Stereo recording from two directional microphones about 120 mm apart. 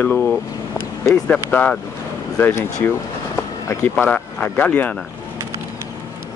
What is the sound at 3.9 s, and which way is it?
Speech, 15° left (ahead or behind).